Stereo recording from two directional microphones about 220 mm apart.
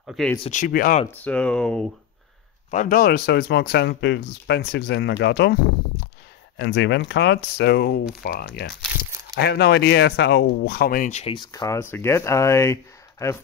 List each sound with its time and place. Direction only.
0.0 s speech: centre (ahead or behind)
0.4 s speech: 35° left (ahead or behind)
1.2 s speech: 5° left (ahead or behind)
2.7 s speech: 40° left (ahead or behind); by 13.4 s 15° left (ahead or behind)